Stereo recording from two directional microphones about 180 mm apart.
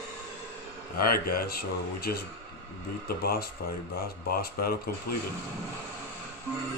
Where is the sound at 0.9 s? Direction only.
55° left (ahead or behind).